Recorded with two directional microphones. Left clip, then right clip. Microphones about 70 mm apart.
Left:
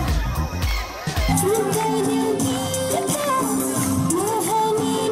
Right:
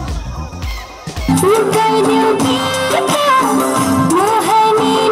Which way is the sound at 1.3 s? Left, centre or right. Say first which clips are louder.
Right 10 dB; centre.